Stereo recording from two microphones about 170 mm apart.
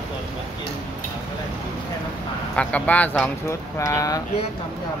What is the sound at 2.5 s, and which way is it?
Speech, 5° left (ahead or behind).